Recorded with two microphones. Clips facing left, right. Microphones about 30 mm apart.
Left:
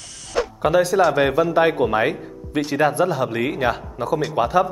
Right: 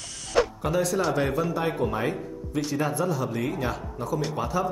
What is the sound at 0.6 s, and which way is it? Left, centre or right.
A man's voice, left.